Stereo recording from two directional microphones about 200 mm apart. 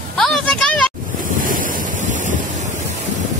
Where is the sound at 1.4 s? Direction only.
45° right (ahead or behind).